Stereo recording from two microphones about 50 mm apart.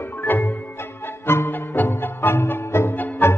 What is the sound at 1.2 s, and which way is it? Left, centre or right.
Music, left.